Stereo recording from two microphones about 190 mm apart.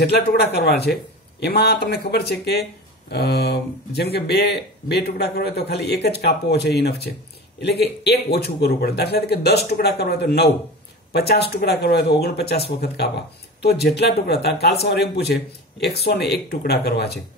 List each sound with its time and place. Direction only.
0.0 s speech: 60° left (ahead or behind)